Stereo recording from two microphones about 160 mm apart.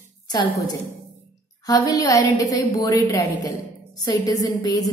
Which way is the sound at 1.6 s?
20° left (ahead or behind).